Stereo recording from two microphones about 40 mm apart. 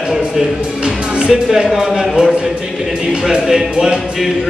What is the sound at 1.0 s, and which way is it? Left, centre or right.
Music, right.